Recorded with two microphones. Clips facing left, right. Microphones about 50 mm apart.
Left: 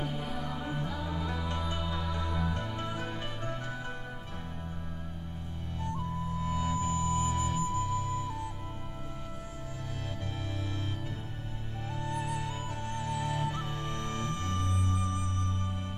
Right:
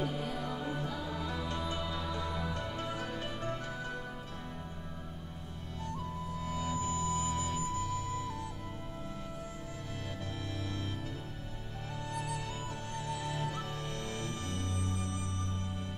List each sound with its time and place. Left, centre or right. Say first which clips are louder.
0.0 s music: even; centre
6.3 s music: left 4 dB; left
12.0 s music: left 4 dB; left